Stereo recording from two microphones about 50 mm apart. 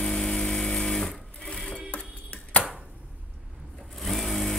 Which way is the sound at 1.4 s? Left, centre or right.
Centre.